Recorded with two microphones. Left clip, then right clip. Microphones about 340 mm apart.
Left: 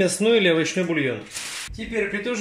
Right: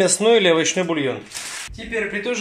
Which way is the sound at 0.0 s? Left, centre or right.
Right.